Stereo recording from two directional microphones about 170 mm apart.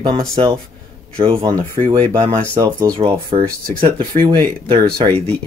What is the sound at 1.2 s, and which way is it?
Speech, 30° right (ahead or behind).